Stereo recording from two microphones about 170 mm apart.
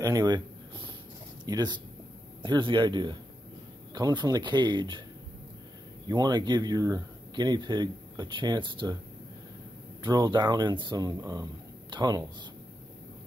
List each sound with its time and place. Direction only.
0.0 s a sound: 20° right (ahead or behind)
1.4 s speech: 25° right (ahead or behind)
6.0 s speech: 25° right (ahead or behind)
10.0 s speech: 25° right (ahead or behind)